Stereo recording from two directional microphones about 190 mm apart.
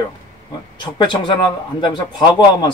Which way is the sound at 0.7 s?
25° left (ahead or behind).